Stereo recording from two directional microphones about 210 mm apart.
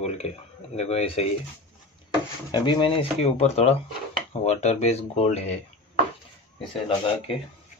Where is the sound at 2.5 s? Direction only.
20° left (ahead or behind).